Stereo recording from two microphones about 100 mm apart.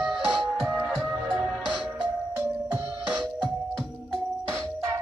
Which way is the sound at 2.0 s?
15° right (ahead or behind).